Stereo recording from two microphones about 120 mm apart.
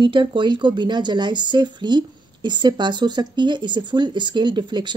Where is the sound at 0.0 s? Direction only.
45° right (ahead or behind).